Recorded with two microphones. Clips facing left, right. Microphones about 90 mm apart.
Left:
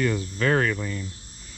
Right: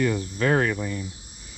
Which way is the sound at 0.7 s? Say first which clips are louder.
Right 1 dB; 40° right (ahead or behind).